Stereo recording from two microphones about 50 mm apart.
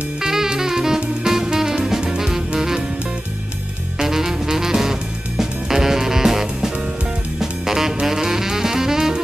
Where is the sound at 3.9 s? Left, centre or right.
Centre.